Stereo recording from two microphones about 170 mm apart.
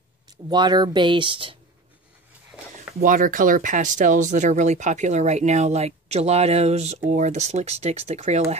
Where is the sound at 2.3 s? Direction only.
5° right (ahead or behind).